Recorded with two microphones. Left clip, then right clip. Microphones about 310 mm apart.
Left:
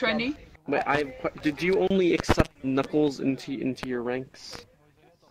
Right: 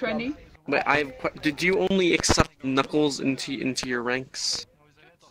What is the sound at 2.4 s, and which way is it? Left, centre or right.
Speech, right.